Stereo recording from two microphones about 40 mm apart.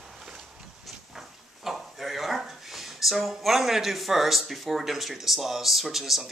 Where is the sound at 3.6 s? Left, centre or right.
Centre.